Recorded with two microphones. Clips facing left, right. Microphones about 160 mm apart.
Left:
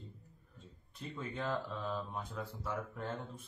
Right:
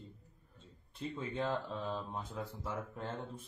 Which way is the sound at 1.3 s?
30° right (ahead or behind).